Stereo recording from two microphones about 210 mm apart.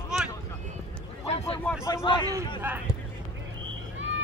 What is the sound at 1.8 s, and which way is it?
Speech, 20° left (ahead or behind).